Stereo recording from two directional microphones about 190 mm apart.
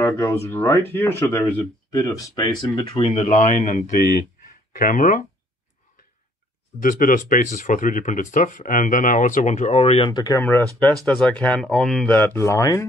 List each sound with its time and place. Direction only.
0.0 s speech: 15° left (ahead or behind); by 5.2 s 45° left (ahead or behind)
6.8 s speech: 45° left (ahead or behind); by 12.8 s 15° left (ahead or behind)